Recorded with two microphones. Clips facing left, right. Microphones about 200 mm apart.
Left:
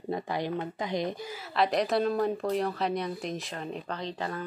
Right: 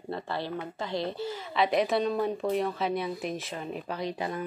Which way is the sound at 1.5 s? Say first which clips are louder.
Even; centre (ahead or behind).